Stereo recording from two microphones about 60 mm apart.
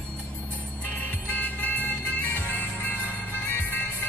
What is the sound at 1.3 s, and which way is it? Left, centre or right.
Music, left.